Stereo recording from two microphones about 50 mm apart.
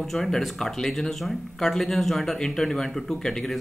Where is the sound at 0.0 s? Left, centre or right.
Centre.